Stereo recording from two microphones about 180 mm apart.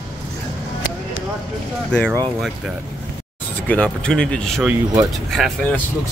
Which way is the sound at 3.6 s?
5° left (ahead or behind).